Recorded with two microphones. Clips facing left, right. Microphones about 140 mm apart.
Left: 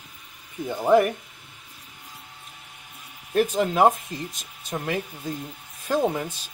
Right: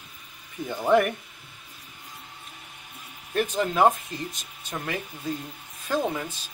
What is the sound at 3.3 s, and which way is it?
Speech, 15° left (ahead or behind).